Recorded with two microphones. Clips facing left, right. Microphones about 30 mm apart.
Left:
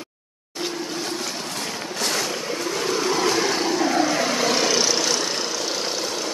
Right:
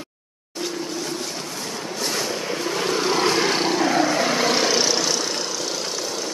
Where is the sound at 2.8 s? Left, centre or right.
Right.